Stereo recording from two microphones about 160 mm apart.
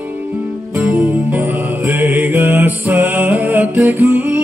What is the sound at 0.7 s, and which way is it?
Music, 5° right (ahead or behind).